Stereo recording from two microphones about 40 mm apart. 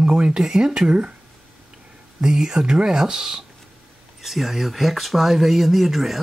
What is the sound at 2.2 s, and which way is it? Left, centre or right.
Speech, centre.